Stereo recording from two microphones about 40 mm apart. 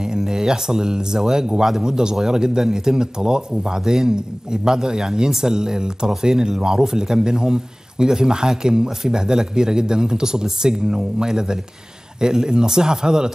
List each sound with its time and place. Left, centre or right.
0.0 s a man's voice: centre